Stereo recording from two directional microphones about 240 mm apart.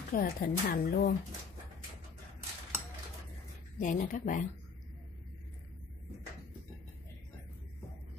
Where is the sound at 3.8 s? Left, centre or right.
Left.